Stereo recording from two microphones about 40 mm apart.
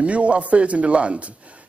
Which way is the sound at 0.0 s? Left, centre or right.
Right.